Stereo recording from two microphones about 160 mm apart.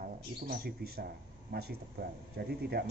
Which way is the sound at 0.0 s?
70° right (ahead or behind).